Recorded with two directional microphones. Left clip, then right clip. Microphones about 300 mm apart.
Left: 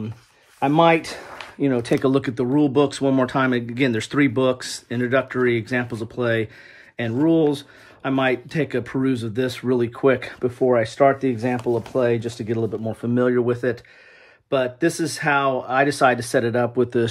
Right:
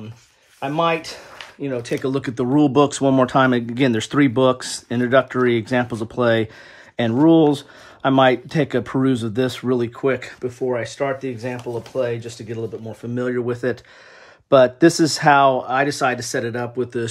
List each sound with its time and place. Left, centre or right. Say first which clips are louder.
1.0 s speech: left 1 dB; centre
14.5 s speech: right 8 dB; centre